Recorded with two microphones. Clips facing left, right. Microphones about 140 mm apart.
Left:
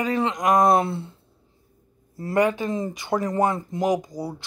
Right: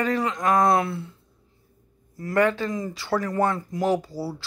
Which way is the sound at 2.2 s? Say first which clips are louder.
Left 1 dB; 30° left (ahead or behind).